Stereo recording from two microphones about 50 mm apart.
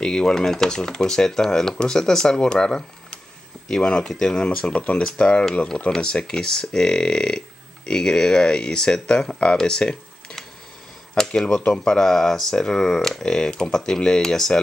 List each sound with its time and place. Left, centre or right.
0.0 s speech: centre; by 5.4 s left
5.9 s speech: centre
11.4 s speech: centre